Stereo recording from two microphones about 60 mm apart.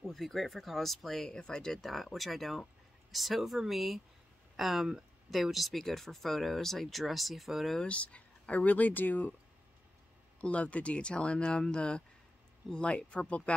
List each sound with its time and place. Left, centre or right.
0.0 s speech: centre
7.8 s speech: left
10.4 s speech: left